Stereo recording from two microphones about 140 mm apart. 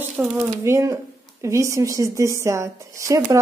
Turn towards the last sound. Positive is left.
turn(degrees=-25)  # may be behind; listen again after turning